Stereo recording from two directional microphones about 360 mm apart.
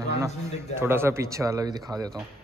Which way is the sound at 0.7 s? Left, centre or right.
Centre.